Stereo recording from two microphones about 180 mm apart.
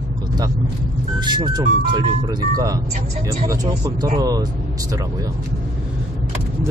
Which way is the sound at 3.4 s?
20° right (ahead or behind).